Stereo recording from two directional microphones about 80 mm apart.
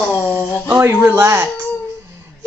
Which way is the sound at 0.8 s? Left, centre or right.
Right.